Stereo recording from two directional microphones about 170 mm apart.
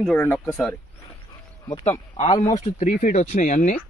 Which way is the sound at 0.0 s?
10° left (ahead or behind).